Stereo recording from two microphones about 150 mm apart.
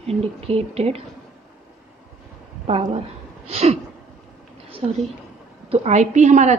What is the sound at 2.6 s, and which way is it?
Speech, 40° right (ahead or behind).